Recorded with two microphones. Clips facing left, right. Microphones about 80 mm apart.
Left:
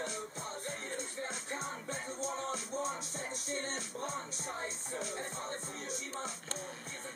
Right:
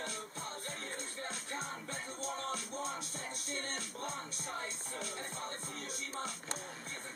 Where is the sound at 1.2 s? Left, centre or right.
Left.